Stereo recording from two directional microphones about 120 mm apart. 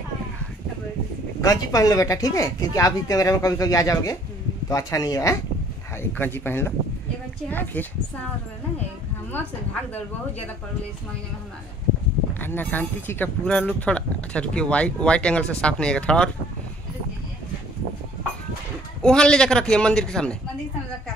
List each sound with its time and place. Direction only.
1.4 s speech: 30° left (ahead or behind)
6.1 s speech: 15° left (ahead or behind)
12.4 s speech: 15° left (ahead or behind)
19.0 s speech: 5° left (ahead or behind)